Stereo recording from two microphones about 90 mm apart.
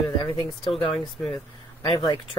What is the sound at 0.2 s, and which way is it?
Speech, 70° left (ahead or behind).